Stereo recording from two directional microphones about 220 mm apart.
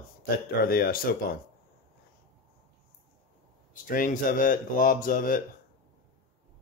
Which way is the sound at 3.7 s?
40° left (ahead or behind).